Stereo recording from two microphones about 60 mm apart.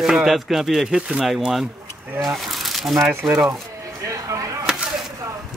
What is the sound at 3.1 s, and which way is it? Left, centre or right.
Speech, right.